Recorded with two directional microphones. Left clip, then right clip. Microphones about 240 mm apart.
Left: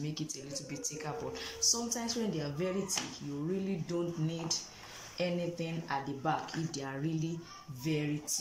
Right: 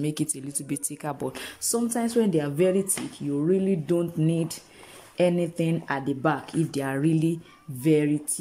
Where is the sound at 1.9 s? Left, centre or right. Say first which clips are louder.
Right 12 dB; right.